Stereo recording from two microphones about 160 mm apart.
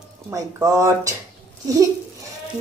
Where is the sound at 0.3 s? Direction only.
20° right (ahead or behind).